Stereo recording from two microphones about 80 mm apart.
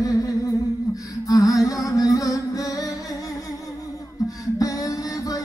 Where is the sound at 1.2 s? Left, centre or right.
Left.